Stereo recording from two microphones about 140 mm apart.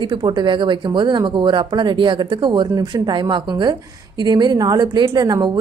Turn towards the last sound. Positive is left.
turn(degrees=-30)  # may be behind; listen again after turning